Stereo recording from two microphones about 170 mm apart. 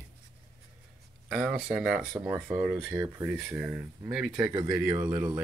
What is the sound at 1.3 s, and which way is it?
Speech, 5° right (ahead or behind).